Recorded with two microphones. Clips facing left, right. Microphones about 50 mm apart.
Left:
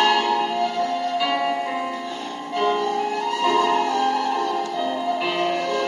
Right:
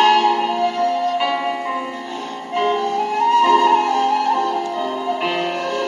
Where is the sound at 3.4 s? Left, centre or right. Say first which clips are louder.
Right 1 dB; right.